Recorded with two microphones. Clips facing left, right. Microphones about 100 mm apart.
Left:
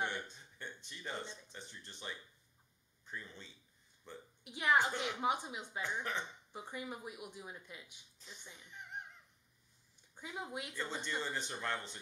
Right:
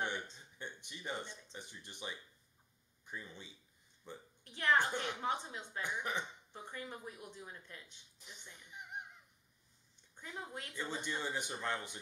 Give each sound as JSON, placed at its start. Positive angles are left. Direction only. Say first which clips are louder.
{"t": 0.6, "sound": "speech", "louder": "right 1 dB", "side_deg": -15}
{"t": 4.5, "sound": "speech", "louder": "left 1 dB", "side_deg": 15}
{"t": 5.8, "sound": "speech", "louder": "even", "side_deg": -15}
{"t": 6.5, "sound": "speech", "louder": "left 3 dB", "side_deg": 10}
{"t": 8.2, "sound": "speech", "louder": "left 1 dB", "side_deg": -15}
{"t": 8.6, "sound": "music", "louder": "right 1 dB", "side_deg": -10}
{"t": 10.1, "sound": "speech", "louder": "left 3 dB", "side_deg": 10}
{"t": 10.7, "sound": "speech", "louder": "right 3 dB", "side_deg": -15}